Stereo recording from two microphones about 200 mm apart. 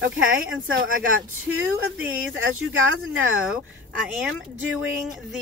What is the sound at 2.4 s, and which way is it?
Speech, 90° right.